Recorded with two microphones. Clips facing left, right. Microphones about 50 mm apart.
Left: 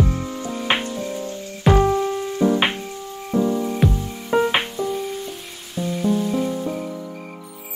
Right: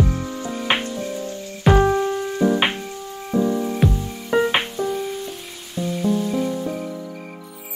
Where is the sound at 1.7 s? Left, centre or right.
Right.